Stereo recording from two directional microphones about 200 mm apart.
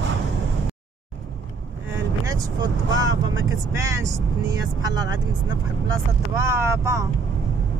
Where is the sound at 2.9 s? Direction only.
70° right (ahead or behind).